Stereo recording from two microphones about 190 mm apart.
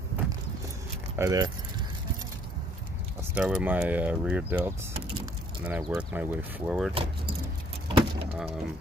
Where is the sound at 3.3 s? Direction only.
5° right (ahead or behind).